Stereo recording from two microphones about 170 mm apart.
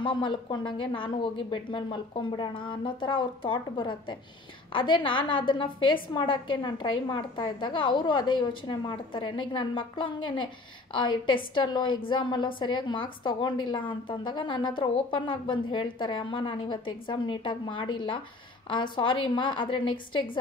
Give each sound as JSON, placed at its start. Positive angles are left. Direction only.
{"t": 0.0, "sound": "a woman's voice", "side_deg": 30}